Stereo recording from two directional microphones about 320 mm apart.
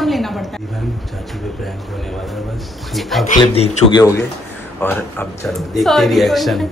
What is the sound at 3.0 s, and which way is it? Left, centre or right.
Speech, centre.